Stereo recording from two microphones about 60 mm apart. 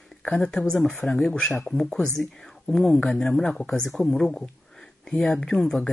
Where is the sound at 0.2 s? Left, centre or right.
Left.